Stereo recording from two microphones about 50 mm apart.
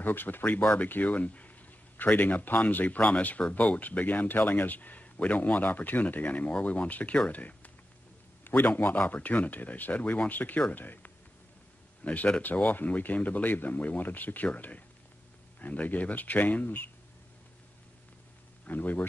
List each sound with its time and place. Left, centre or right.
0.0 s speech: left
18.7 s speech: left